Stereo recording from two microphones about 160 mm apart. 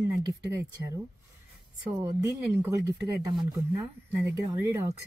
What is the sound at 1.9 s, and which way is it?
Speech, 20° right (ahead or behind).